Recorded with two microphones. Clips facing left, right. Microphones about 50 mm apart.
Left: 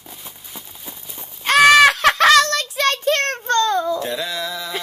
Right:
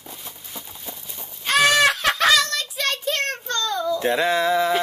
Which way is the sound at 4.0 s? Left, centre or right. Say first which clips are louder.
Right 5 dB; right.